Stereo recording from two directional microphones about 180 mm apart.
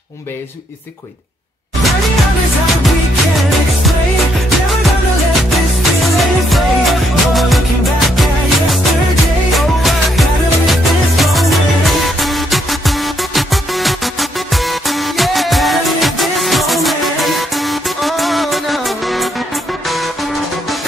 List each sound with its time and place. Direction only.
6.5 s music: centre (ahead or behind)
9.5 s music: centre (ahead or behind)